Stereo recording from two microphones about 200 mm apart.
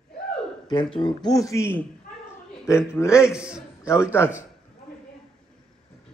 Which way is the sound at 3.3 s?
5° right (ahead or behind).